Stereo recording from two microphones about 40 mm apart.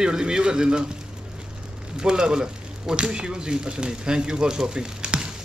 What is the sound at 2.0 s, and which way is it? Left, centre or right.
Speech, right.